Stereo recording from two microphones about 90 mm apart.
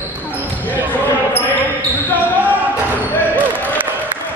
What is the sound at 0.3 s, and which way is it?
Basketball bounce, 20° right (ahead or behind).